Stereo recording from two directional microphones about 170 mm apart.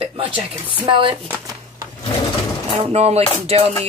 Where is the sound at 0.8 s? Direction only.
30° right (ahead or behind).